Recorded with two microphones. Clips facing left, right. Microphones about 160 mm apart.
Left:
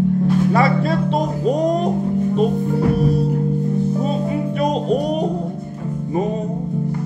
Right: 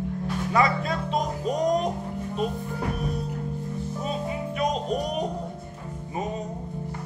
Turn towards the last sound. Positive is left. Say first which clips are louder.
# left 8 dB
turn(degrees=30)  # may be behind; listen again after turning